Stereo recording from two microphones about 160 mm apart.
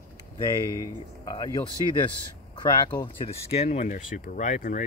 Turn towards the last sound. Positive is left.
turn(degrees=50)  # may be behind; listen again after turning